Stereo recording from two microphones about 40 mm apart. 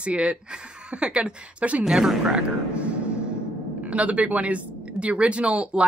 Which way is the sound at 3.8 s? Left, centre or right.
Right.